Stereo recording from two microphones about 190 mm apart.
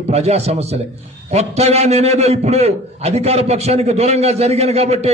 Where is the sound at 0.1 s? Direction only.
35° right (ahead or behind).